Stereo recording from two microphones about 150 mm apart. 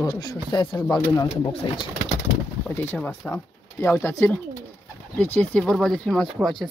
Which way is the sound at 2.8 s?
15° left (ahead or behind).